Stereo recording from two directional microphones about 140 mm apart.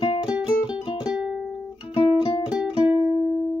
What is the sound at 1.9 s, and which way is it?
Music, 40° left (ahead or behind).